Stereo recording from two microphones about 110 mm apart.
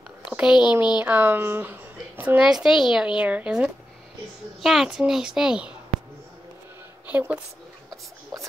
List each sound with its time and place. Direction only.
0.3 s a child's voice: 5° right (ahead or behind)
7.1 s a woman's voice: 15° right (ahead or behind)
7.9 s a sound: 30° right (ahead or behind)